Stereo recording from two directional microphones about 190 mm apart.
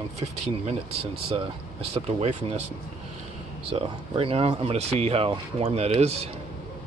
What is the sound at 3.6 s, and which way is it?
Speech, 30° right (ahead or behind).